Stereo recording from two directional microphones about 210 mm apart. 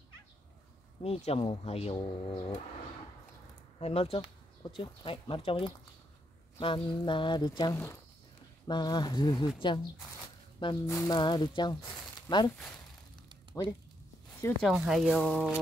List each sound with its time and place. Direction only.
1.0 s speech: 30° left (ahead or behind)
3.8 s speech: 30° left (ahead or behind)
10.6 s speech: 15° left (ahead or behind)
12.5 s speech: 5° left (ahead or behind)
14.6 s speech: centre (ahead or behind)